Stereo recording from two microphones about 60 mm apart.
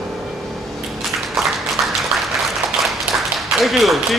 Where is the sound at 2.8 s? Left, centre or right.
Centre.